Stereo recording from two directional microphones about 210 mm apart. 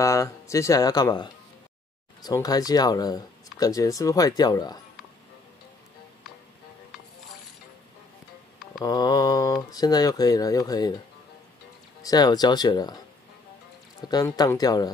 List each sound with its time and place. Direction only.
0.0 s speech: 15° left (ahead or behind)
8.8 s speech: 20° left (ahead or behind)
12.0 s speech: 20° left (ahead or behind)
14.0 s speech: 20° left (ahead or behind)